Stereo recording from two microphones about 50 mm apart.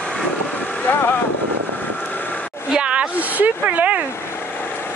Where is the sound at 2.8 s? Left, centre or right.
Right.